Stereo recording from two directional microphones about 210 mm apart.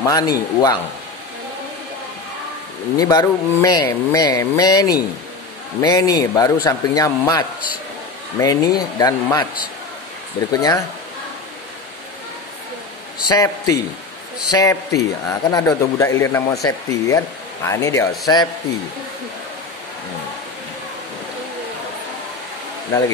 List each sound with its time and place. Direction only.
0.0 s a man's voice: 15° left (ahead or behind)
3.0 s a man's voice: 20° left (ahead or behind)
10.5 s a man's voice: 15° left (ahead or behind)
13.3 s a man's voice: 15° left (ahead or behind)